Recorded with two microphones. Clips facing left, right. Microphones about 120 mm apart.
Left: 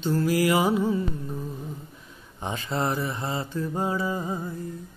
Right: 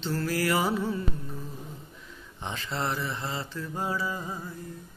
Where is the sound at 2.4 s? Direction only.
15° left (ahead or behind).